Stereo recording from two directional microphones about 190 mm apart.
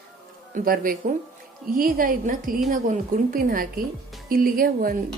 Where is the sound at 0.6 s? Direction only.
45° right (ahead or behind).